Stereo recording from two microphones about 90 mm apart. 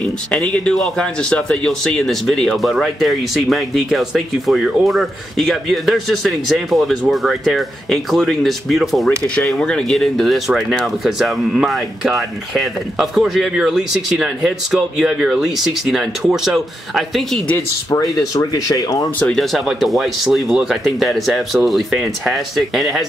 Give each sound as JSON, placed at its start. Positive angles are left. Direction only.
{"t": 0.3, "sound": "speech", "side_deg": 10}
{"t": 18.1, "sound": "speech", "side_deg": 40}
{"t": 19.3, "sound": "speech", "side_deg": 0}